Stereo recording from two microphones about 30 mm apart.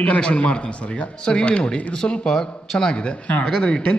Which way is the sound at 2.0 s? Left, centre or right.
Left.